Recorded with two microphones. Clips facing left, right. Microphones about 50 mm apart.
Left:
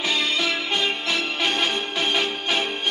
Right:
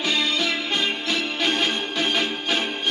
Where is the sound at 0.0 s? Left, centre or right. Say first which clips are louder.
Even; left.